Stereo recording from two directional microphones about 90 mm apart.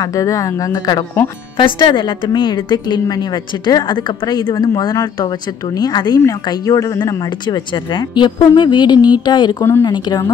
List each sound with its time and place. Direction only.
0.0 s speech: 40° left (ahead or behind)
1.6 s a woman's voice: 70° left (ahead or behind)
9.6 s speech: 30° left (ahead or behind)
9.8 s a woman's voice: 50° left (ahead or behind)